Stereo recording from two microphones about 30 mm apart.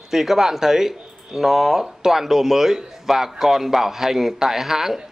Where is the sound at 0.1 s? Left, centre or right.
Centre.